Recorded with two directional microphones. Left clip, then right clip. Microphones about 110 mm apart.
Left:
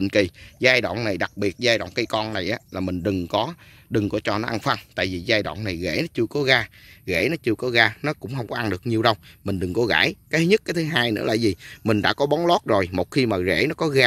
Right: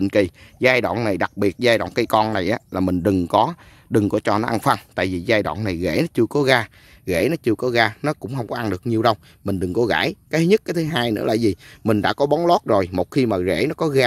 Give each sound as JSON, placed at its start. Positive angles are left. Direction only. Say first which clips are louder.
{"t": 0.0, "sound": "speech", "louder": "right 2 dB", "side_deg": -30}
{"t": 1.9, "sound": "speech", "louder": "right 6 dB", "side_deg": -65}